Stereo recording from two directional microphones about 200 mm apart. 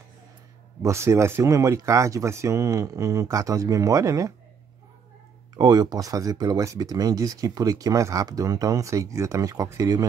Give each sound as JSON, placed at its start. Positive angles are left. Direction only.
{"t": 0.8, "sound": "speech", "side_deg": -15}
{"t": 5.6, "sound": "speech", "side_deg": -20}